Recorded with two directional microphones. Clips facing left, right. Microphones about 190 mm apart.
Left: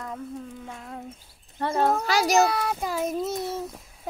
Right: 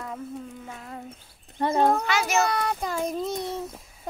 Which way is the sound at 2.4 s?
5° left (ahead or behind).